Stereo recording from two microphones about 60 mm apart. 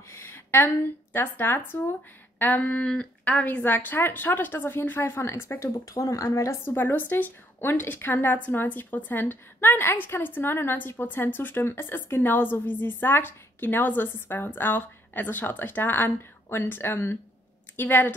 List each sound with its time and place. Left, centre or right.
0.1 s a sound: left
1.1 s a woman's voice: left
2.3 s a sound: left
2.6 s speech: centre
3.4 s a woman's voice: left
6.2 s a woman's voice: left
6.6 s a woman's voice: left